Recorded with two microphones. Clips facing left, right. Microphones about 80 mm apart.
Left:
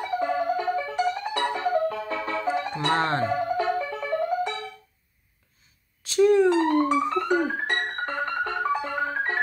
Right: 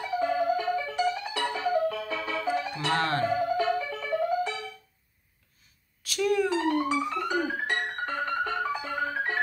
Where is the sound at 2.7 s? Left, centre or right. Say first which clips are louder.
Left 5 dB; left.